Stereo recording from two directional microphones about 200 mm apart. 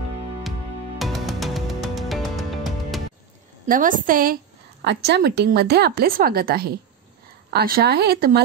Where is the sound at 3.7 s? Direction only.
40° right (ahead or behind).